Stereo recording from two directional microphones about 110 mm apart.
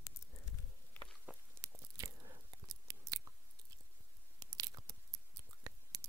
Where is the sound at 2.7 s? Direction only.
35° right (ahead or behind).